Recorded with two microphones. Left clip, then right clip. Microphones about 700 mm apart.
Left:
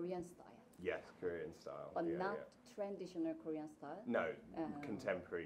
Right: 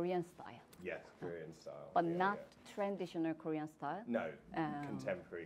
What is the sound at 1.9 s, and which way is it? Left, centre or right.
Speech, right.